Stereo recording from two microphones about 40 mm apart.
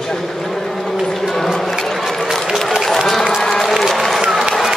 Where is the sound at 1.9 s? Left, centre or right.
Centre.